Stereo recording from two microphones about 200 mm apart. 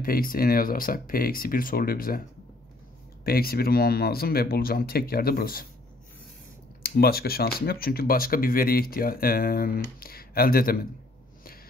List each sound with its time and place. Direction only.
0.0 s speech: 45° left (ahead or behind)
3.3 s speech: 50° left (ahead or behind)
6.8 s speech: 50° left (ahead or behind)